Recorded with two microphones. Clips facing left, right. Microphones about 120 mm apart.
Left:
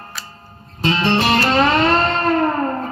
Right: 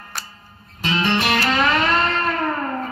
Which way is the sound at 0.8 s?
30° left (ahead or behind).